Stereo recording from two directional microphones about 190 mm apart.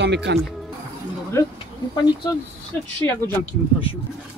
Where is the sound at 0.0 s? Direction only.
65° right (ahead or behind).